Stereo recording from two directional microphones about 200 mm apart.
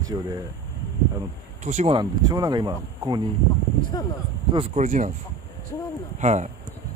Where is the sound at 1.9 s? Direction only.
20° right (ahead or behind).